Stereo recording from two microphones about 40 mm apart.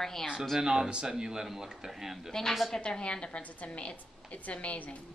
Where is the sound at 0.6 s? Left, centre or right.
Centre.